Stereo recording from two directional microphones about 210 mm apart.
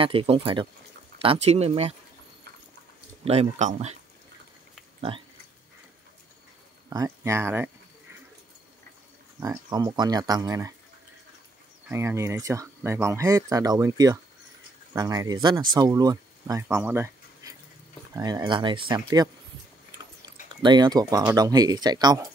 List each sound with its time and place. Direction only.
0.0 s speech: 25° right (ahead or behind)
3.3 s speech: 30° right (ahead or behind)
6.9 s speech: 15° right (ahead or behind)
9.4 s speech: 15° right (ahead or behind)
11.9 s speech: 15° right (ahead or behind)
20.6 s speech: 20° right (ahead or behind)